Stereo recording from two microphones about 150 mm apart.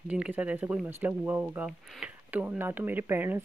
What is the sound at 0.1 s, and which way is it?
Speech, 10° right (ahead or behind).